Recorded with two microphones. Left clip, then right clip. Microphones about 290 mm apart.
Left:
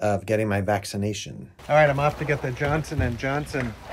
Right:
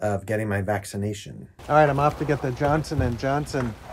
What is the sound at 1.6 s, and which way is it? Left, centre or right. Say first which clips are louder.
Speech: even; centre.